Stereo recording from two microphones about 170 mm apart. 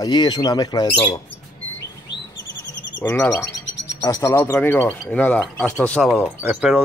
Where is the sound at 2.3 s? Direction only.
90° left.